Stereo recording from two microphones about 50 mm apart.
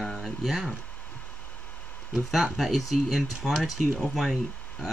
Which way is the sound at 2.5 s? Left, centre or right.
Centre.